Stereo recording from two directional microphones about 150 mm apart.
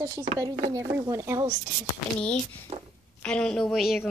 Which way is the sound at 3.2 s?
5° left (ahead or behind).